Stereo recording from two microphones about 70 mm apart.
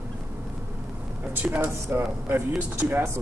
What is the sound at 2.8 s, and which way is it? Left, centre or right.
Speech, right.